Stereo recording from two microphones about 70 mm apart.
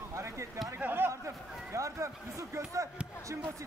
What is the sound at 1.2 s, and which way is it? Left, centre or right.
Speech, right.